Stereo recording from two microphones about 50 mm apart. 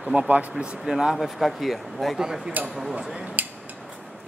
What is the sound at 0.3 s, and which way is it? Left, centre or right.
Speech, right.